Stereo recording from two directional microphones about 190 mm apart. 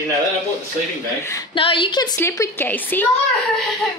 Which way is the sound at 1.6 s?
25° left (ahead or behind).